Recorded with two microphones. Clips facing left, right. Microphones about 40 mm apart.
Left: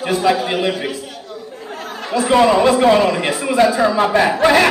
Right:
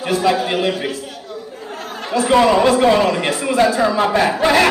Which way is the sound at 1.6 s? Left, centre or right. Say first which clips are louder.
Left 2 dB; centre.